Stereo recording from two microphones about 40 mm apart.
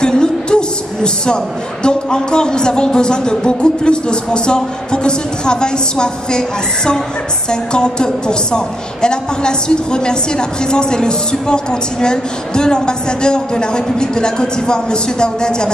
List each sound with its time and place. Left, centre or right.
0.0 s a woman's voice: left